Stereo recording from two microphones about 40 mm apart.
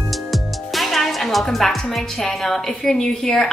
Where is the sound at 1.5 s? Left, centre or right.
Centre.